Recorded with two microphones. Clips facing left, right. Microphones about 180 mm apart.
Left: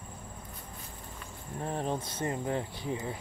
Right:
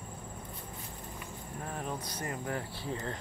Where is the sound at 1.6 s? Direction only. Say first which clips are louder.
Left 6 dB; 30° left (ahead or behind).